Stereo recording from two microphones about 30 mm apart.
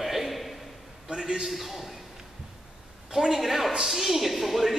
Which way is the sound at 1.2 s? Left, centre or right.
Centre.